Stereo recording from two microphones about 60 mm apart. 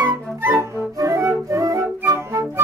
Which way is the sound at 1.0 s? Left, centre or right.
Right.